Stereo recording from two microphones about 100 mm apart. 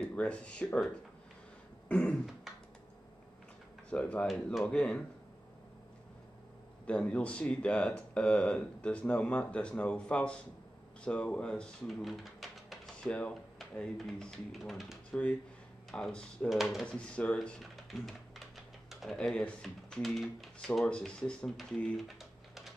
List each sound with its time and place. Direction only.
0.0 s speech: 10° left (ahead or behind)
1.9 s speech: 15° left (ahead or behind)
3.9 s speech: 15° left (ahead or behind)
6.9 s speech: 10° left (ahead or behind)
13.1 s speech: 10° left (ahead or behind)
16.4 s speech: centre (ahead or behind)
16.8 s speech: 10° left (ahead or behind)
18.9 s typing: centre (ahead or behind)
19.1 s speech: 10° left (ahead or behind)
22.0 s typing: centre (ahead or behind)